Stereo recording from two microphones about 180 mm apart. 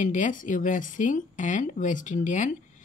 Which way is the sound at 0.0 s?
45° left (ahead or behind).